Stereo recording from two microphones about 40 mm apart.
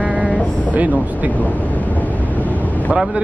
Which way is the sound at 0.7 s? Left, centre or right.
Right.